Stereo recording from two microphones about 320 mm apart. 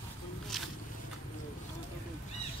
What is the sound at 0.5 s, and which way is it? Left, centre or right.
Boat, centre.